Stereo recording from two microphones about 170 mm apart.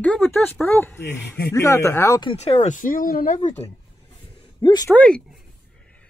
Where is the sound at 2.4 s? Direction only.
40° left (ahead or behind).